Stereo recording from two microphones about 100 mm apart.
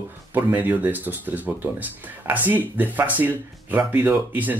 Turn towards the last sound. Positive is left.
turn(degrees=-15)  # may be behind; listen again after turning